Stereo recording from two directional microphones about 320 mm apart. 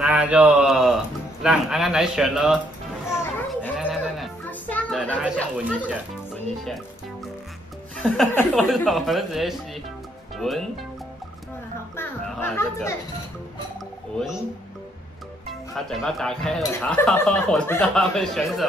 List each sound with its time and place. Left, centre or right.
0.0 s a man's voice: centre
3.1 s music: centre
8.0 s speech: centre
11.9 s music: centre
14.1 s speech: centre
15.7 s speech: centre